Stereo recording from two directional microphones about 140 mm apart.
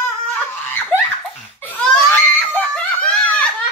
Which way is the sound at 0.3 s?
10° left (ahead or behind).